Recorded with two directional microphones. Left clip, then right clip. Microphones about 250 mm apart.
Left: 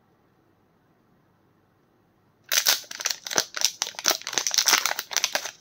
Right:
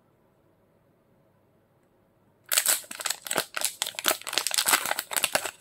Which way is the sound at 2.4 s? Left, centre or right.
Centre.